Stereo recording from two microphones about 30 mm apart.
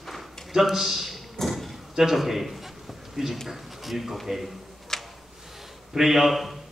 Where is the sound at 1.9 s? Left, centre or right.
Centre.